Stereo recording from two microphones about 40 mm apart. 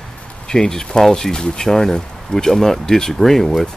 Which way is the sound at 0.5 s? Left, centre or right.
Centre.